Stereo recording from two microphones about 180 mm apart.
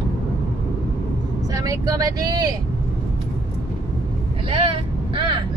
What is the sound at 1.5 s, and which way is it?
Speech, 20° right (ahead or behind).